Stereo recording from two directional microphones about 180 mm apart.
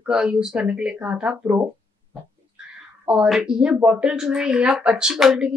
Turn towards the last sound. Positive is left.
turn(degrees=0)  # may be behind; listen again after turning